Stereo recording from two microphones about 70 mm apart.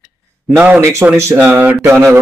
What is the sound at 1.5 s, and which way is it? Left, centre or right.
Speech, right.